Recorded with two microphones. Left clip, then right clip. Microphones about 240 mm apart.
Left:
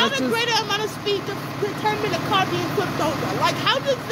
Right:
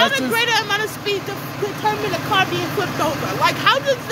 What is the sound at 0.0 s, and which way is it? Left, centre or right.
Speech, centre.